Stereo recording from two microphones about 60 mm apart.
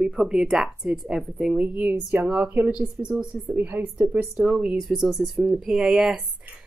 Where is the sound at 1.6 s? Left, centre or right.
Right.